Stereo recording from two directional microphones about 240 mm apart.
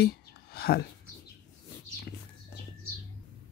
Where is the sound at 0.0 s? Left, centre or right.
Left.